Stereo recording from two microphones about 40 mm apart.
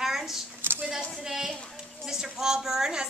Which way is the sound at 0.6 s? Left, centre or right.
Right.